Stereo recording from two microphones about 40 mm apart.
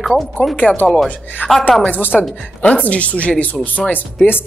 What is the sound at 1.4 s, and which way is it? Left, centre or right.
Speech, left.